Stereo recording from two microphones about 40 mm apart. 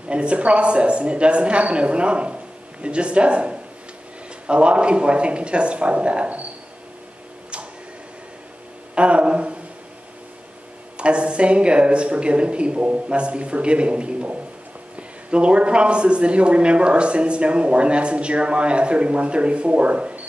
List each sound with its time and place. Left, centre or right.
0.1 s speech: right
8.9 s speech: right
11.0 s speech: right